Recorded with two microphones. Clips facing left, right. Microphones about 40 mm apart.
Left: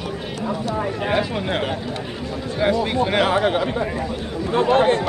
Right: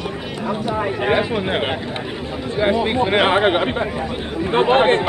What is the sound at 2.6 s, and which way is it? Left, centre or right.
Speech, right.